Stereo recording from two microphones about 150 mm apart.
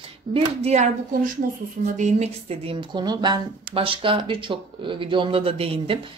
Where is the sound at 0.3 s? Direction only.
45° right (ahead or behind).